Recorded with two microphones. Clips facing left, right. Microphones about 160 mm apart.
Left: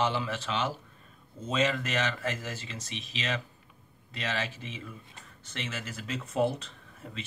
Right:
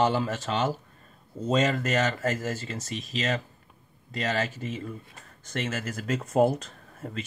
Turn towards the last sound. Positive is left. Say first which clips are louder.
# right 6 dB
turn(degrees=-45)  # may be behind; listen again after turning